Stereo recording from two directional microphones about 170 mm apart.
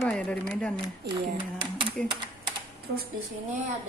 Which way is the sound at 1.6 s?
30° right (ahead or behind).